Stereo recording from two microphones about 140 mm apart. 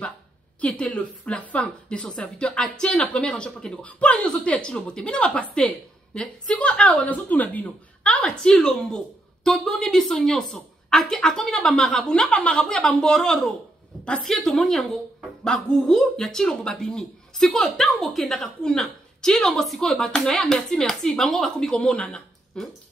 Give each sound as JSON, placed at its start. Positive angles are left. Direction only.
{"t": 0.6, "sound": "a woman's voice", "side_deg": 10}